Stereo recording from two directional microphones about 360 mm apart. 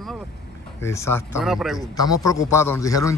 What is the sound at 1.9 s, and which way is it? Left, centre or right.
A man's voice, centre.